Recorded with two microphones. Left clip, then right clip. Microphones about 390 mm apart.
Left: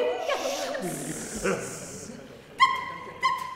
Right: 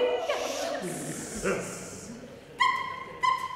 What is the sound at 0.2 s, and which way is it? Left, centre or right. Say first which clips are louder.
Music: left 2 dB; left.